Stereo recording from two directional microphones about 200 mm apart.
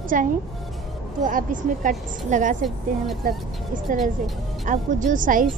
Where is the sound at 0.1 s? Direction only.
40° right (ahead or behind).